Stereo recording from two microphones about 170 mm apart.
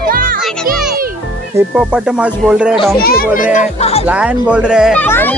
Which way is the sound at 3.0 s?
65° left (ahead or behind).